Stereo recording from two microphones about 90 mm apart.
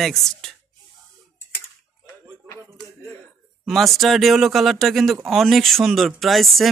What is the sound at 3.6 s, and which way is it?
Speech, centre (ahead or behind).